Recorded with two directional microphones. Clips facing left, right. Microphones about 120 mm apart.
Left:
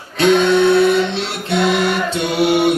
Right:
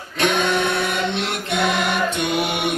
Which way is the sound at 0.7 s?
30° left (ahead or behind).